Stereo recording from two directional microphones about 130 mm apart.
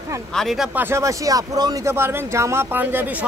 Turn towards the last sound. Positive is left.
turn(degrees=-15)  # may be behind; listen again after turning